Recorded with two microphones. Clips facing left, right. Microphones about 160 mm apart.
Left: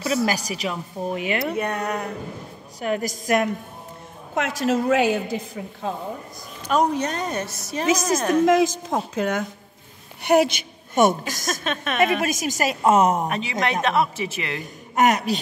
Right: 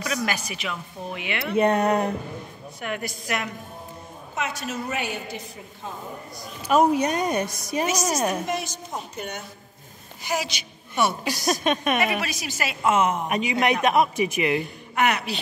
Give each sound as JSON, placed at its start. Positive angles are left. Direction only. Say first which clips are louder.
{"t": 0.0, "sound": "a woman's voice", "louder": "left 5 dB", "side_deg": 30}
{"t": 1.6, "sound": "speech", "louder": "right 6 dB", "side_deg": -30}
{"t": 2.8, "sound": "a woman's voice", "louder": "left 6 dB", "side_deg": 35}
{"t": 4.4, "sound": "a woman's voice", "louder": "left 8 dB", "side_deg": 90}
{"t": 6.7, "sound": "a woman's voice", "louder": "right 2 dB", "side_deg": -10}
{"t": 8.5, "sound": "a woman's voice", "louder": "left 11 dB", "side_deg": 90}
{"t": 10.2, "sound": "a woman's voice", "louder": "left 11 dB", "side_deg": 60}
{"t": 11.6, "sound": "a woman's voice", "louder": "right 4 dB", "side_deg": -15}
{"t": 12.2, "sound": "a woman's voice", "louder": "left 6 dB", "side_deg": 45}
{"t": 13.3, "sound": "a woman's voice", "louder": "right 2 dB", "side_deg": -15}
{"t": 15.0, "sound": "a woman's voice", "louder": "left 4 dB", "side_deg": 40}